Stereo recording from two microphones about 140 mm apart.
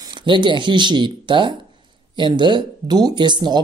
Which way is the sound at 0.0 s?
35° right (ahead or behind).